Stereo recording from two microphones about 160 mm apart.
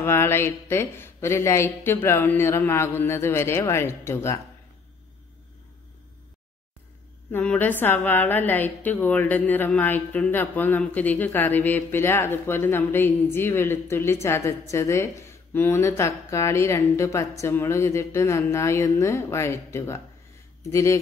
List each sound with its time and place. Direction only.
0.0 s a woman's voice: 15° left (ahead or behind)
7.2 s a woman's voice: 10° left (ahead or behind)